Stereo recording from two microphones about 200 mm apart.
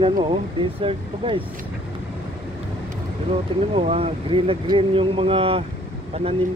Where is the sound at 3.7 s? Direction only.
30° right (ahead or behind).